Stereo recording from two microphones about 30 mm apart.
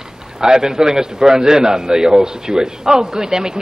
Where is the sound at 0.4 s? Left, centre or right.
Right.